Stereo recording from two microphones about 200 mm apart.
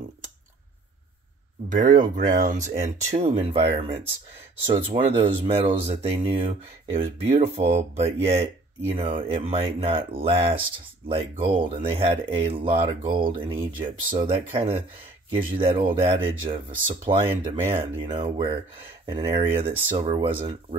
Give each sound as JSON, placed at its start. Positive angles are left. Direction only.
{"t": 1.7, "sound": "speech", "side_deg": -40}